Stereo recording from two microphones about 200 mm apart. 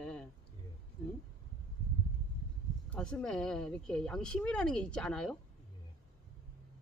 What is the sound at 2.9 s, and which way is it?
Speech, 5° left (ahead or behind).